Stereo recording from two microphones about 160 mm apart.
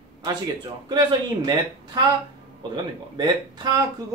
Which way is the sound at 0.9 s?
25° right (ahead or behind).